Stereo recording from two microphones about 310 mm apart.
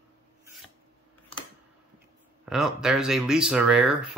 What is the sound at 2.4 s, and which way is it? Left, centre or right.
Speech, centre.